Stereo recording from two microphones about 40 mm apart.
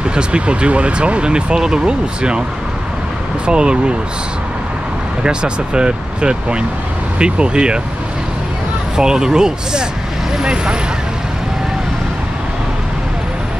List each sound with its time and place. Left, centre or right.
0.1 s speech: right
3.4 s speech: right
5.2 s speech: right
8.9 s speech: centre